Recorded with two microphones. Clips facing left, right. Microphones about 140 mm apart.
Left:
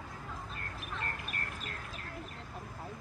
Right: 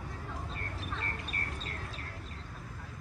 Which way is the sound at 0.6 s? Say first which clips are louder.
Right 2 dB; 30° right (ahead or behind).